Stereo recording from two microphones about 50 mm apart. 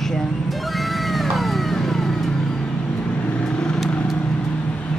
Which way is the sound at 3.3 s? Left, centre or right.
Left.